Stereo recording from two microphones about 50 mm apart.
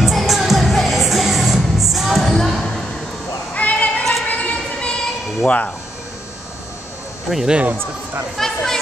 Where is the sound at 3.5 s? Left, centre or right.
Left.